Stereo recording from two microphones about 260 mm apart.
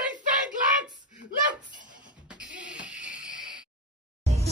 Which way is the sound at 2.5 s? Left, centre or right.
Centre.